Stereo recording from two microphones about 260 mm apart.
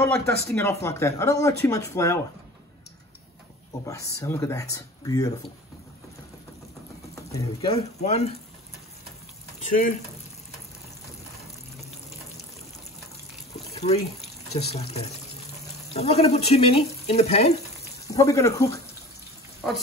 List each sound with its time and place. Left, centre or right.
0.6 s speech: centre
3.8 s speech: centre
7.2 s speech: centre
9.6 s speech: left
13.7 s water: left
14.5 s speech: left
18.0 s speech: centre
19.6 s frying: centre